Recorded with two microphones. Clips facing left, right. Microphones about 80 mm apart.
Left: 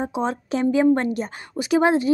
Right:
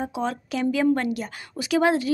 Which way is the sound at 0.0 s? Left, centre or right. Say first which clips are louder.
Left 3 dB; left.